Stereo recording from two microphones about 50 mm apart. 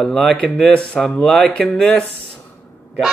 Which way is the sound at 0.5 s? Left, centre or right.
Left.